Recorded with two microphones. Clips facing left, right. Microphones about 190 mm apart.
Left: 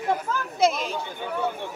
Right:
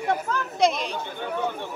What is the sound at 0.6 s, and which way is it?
Speech, 5° left (ahead or behind).